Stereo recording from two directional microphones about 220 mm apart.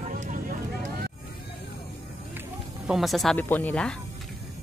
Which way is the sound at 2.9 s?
Centre (ahead or behind).